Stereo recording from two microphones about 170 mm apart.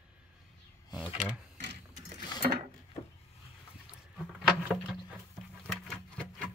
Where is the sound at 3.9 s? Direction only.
5° right (ahead or behind).